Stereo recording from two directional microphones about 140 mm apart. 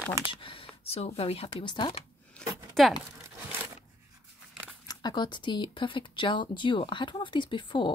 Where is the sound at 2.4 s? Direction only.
5° left (ahead or behind).